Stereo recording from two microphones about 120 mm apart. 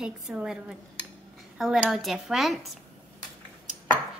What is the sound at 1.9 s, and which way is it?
Speech, centre (ahead or behind).